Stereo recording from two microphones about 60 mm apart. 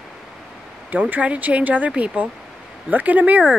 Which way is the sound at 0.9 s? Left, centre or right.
Right.